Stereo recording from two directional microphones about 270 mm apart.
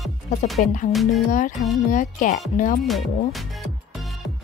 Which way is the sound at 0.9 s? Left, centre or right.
Centre.